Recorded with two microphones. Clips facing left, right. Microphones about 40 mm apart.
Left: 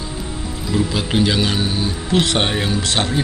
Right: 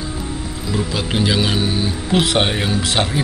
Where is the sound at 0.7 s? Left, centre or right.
Centre.